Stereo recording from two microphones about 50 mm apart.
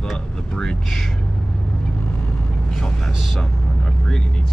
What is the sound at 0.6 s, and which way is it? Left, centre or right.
Speech, centre.